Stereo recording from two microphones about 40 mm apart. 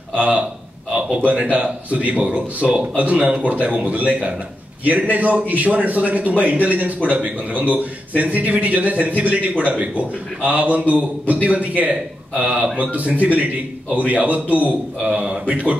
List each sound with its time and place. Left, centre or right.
0.1 s a man's voice: right
1.5 s a man's voice: right
15.0 s speech: right